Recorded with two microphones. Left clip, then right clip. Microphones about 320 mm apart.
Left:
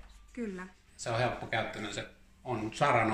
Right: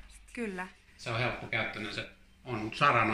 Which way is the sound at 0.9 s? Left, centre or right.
Left.